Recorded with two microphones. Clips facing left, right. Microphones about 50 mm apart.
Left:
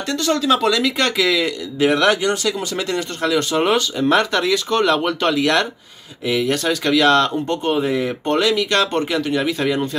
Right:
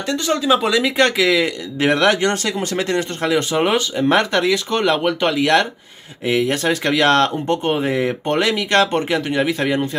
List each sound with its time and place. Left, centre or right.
0.1 s speech: centre